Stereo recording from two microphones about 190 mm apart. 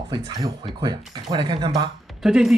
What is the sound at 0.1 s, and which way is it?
Speech, 25° right (ahead or behind).